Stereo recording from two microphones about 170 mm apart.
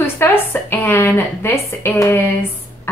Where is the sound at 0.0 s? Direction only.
15° left (ahead or behind).